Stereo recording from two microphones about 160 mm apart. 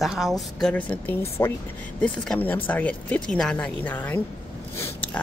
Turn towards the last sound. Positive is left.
turn(degrees=15)  # may be behind; listen again after turning